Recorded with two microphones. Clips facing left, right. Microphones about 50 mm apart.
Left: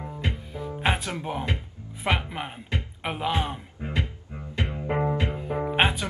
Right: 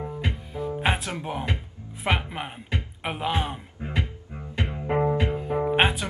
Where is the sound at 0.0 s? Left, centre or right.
Centre.